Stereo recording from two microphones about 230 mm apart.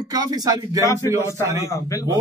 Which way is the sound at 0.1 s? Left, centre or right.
Centre.